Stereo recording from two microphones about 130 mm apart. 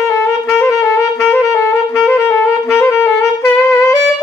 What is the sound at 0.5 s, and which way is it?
Music, 20° left (ahead or behind).